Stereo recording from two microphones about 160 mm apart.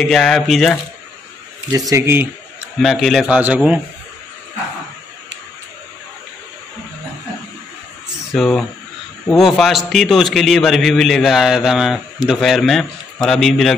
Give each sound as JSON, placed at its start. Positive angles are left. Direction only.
{"t": 0.0, "sound": "a man's voice", "side_deg": 0}
{"t": 1.7, "sound": "speech", "side_deg": -20}
{"t": 2.8, "sound": "a man's voice", "side_deg": 0}
{"t": 8.3, "sound": "a man's voice", "side_deg": 0}